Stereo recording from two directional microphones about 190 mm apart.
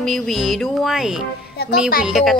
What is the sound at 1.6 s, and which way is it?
Music, 60° left (ahead or behind).